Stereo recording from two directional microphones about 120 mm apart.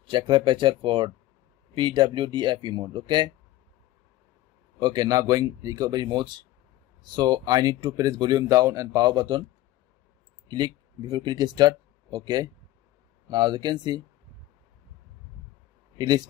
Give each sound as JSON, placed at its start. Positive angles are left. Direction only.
{"t": 0.1, "sound": "speech", "side_deg": -40}
{"t": 4.7, "sound": "speech", "side_deg": -35}
{"t": 10.5, "sound": "speech", "side_deg": -35}